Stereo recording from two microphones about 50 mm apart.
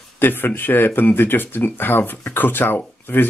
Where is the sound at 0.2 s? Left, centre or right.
Left.